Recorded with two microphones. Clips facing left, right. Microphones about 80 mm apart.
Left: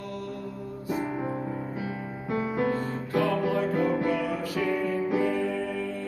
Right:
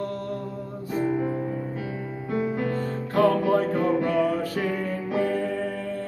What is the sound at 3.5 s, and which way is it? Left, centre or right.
Music, right.